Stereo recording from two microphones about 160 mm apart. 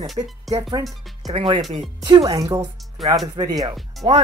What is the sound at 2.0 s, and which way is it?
Speech, 25° right (ahead or behind).